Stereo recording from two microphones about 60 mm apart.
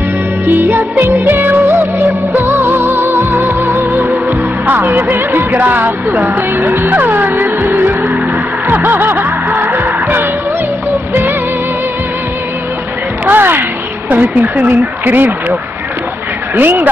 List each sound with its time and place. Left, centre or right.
0.5 s music: right
13.2 s a sound: right
14.2 s speech: right
16.5 s speech: right